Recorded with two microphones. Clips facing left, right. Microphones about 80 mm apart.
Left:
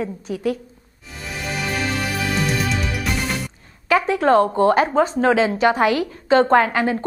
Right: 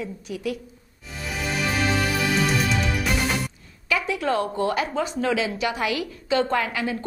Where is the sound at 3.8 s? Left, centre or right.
Left.